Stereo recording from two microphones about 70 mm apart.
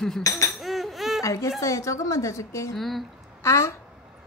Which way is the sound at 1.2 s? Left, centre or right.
Left.